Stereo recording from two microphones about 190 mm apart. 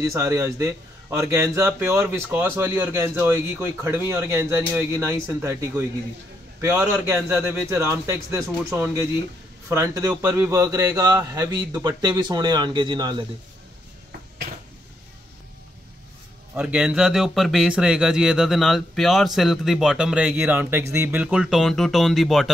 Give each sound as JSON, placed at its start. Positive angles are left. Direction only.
{"t": 0.1, "sound": "a man's voice", "side_deg": -15}
{"t": 16.5, "sound": "speech", "side_deg": -5}